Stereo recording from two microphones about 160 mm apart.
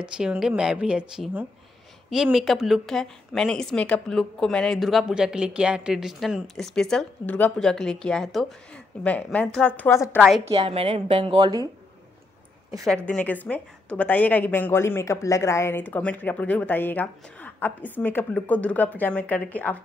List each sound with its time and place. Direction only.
0.0 s a woman's voice: 5° right (ahead or behind); by 10.2 s 15° left (ahead or behind)
10.4 s a woman's voice: 40° right (ahead or behind)
12.8 s a woman's voice: 5° left (ahead or behind)